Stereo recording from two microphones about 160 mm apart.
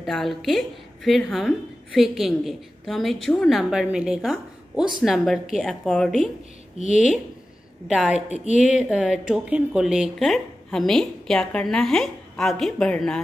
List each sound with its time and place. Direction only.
0.0 s a woman's voice: centre (ahead or behind)
6.8 s a woman's voice: 50° left (ahead or behind)
7.9 s a woman's voice: 5° right (ahead or behind)
8.3 s a woman's voice: 50° left (ahead or behind)
8.7 s a woman's voice: 5° right (ahead or behind)